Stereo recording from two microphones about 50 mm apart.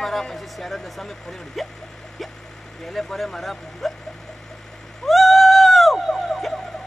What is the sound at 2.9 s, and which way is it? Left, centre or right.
Speech, centre.